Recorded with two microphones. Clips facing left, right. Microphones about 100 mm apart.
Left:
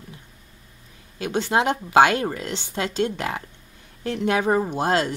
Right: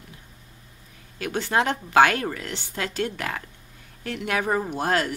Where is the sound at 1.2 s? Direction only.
20° left (ahead or behind).